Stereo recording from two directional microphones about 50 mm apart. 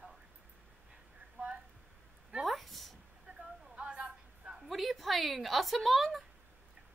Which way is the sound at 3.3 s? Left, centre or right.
Centre.